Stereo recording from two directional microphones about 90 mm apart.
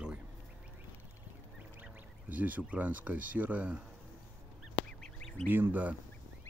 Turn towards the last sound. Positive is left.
turn(degrees=-20)  # may be behind; listen again after turning